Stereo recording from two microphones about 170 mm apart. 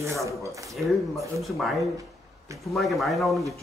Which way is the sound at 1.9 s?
20° right (ahead or behind).